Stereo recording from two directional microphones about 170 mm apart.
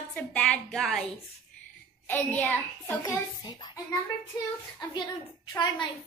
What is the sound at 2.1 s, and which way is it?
Speech, 10° left (ahead or behind).